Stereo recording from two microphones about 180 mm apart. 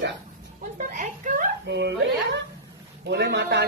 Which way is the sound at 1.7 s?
70° right (ahead or behind).